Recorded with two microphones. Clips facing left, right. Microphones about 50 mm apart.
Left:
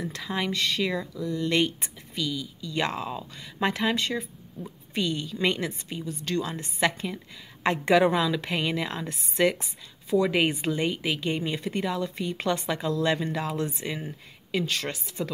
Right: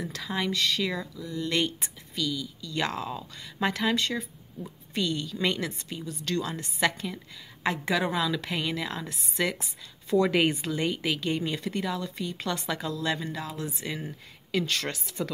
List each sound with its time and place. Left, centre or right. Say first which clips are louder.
0.2 s speech: even; centre
1.1 s a woman's voice: left 4 dB; left
1.5 s speech: left 2 dB; left
7.6 s a woman's voice: left 6 dB; left
8.4 s a woman's voice: left 3 dB; left
10.0 s speech: even; centre
10.6 s speech: left 2 dB; left
12.6 s speech: left 3 dB; centre
12.9 s a woman's voice: left 7 dB; left
13.3 s speech: left 6 dB; left
13.8 s speech: left 2 dB; centre